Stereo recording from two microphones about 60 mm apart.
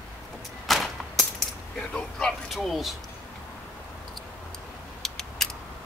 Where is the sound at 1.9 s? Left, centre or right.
Centre.